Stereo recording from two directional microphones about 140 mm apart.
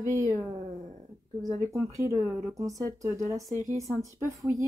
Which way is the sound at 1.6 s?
20° right (ahead or behind).